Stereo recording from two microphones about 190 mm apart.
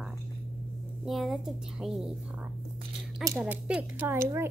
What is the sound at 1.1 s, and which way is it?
A child's voice, centre (ahead or behind).